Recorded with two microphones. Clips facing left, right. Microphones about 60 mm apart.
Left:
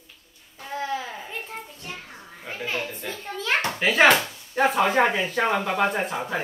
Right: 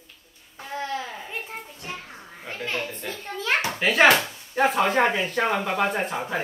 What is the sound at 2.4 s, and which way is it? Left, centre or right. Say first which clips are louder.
Speech: even; centre.